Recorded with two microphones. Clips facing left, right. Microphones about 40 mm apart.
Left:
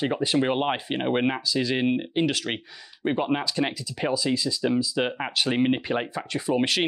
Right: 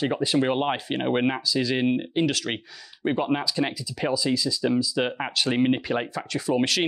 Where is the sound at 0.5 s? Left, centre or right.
Left.